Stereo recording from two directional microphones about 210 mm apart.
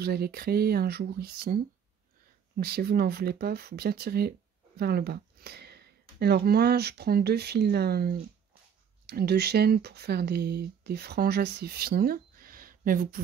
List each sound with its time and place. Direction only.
0.0 s speech: 50° right (ahead or behind)
2.6 s speech: 50° right (ahead or behind)